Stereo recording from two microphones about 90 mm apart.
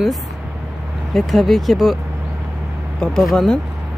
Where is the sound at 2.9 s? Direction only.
5° left (ahead or behind).